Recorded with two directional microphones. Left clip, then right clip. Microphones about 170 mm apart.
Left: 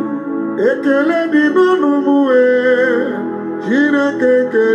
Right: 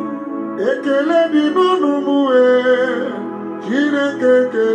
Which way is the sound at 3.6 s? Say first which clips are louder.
Left 3 dB; 30° left (ahead or behind).